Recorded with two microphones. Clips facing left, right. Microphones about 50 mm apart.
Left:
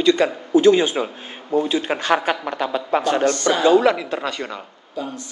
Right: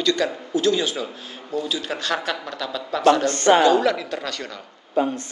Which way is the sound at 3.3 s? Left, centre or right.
Right.